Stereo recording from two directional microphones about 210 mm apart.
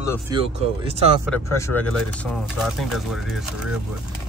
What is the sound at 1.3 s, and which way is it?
Speech, 10° left (ahead or behind).